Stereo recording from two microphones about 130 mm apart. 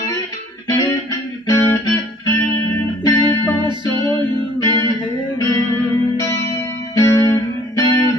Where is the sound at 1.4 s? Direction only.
20° left (ahead or behind).